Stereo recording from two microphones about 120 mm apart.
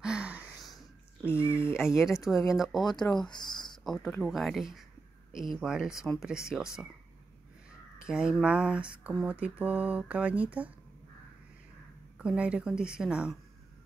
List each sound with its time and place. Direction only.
0.0 s gasp: 10° right (ahead or behind)
1.2 s a sound: 20° left (ahead or behind)
1.8 s speech: 5° right (ahead or behind)
2.8 s speech: 35° left (ahead or behind)
3.7 s a sound: centre (ahead or behind)
4.2 s speech: centre (ahead or behind)
8.1 s speech: 5° right (ahead or behind)
12.2 s speech: 10° right (ahead or behind)